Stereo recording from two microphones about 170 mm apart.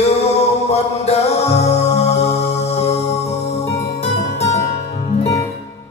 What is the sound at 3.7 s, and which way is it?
Music, 40° left (ahead or behind).